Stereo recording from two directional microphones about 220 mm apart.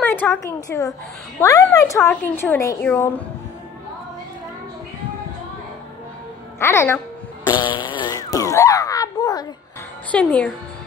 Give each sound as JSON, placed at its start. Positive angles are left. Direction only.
{"t": 0.0, "sound": "a woman's voice", "side_deg": 10}
{"t": 6.6, "sound": "a woman's voice", "side_deg": 10}
{"t": 7.4, "sound": "fart", "side_deg": 20}
{"t": 10.1, "sound": "speech", "side_deg": 5}